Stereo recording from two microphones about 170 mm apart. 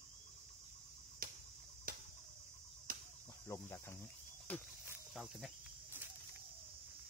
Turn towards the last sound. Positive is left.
turn(degrees=0)  # may be behind; listen again after turning